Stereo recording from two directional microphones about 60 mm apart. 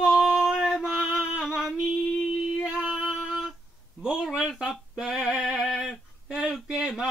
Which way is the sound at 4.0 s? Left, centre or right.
Centre.